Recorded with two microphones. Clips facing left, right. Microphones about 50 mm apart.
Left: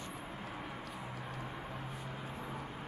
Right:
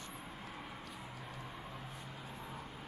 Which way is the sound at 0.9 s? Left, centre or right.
Centre.